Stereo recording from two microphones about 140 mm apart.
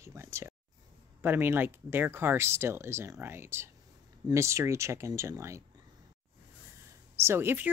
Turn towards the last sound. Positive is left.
turn(degrees=-15)  # may be behind; listen again after turning